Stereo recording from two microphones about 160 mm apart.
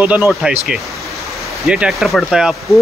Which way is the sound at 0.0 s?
10° right (ahead or behind).